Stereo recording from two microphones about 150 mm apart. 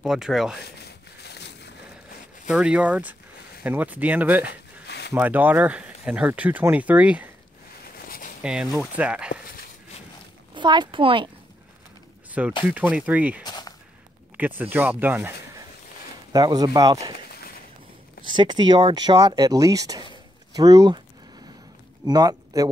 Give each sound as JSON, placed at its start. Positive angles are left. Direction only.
{"t": 0.0, "sound": "speech", "side_deg": 0}
{"t": 0.6, "sound": "a sound", "side_deg": 90}
{"t": 2.4, "sound": "speech", "side_deg": -5}
{"t": 8.4, "sound": "speech", "side_deg": -5}
{"t": 10.5, "sound": "speech", "side_deg": -30}
{"t": 12.3, "sound": "speech", "side_deg": -10}
{"t": 13.4, "sound": "a sound", "side_deg": 25}
{"t": 14.3, "sound": "speech", "side_deg": -10}
{"t": 16.3, "sound": "speech", "side_deg": -25}
{"t": 18.2, "sound": "speech", "side_deg": -30}
{"t": 22.0, "sound": "speech", "side_deg": -25}